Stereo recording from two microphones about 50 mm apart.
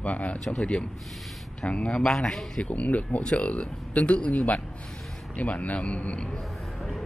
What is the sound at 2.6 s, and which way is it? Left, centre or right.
Speech, left.